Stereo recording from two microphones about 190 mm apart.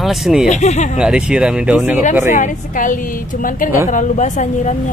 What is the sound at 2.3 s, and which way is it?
A woman's voice, 40° left (ahead or behind).